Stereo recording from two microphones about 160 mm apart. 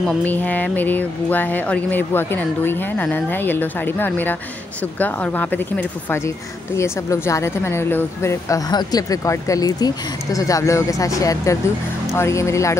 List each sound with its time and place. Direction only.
0.0 s speech: 10° left (ahead or behind)